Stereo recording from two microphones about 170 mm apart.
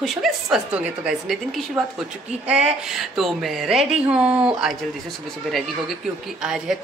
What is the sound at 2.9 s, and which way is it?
A woman's voice, centre (ahead or behind).